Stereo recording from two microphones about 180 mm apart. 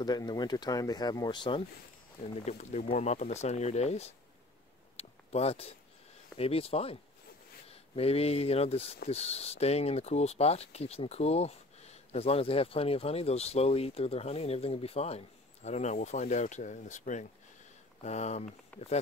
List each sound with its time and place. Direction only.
0.0 s speech: 25° left (ahead or behind)
2.4 s speech: 40° left (ahead or behind)
4.9 s a sound: 35° left (ahead or behind)
6.3 s speech: 35° left (ahead or behind)